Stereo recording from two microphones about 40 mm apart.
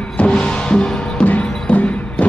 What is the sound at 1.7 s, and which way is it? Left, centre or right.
Music, left.